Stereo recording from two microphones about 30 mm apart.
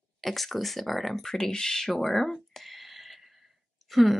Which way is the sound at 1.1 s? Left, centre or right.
Centre.